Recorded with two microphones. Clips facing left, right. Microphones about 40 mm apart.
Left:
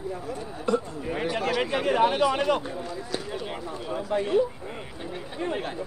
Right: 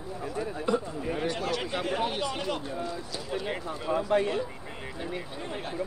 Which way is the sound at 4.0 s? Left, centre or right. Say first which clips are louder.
Right 2 dB; right.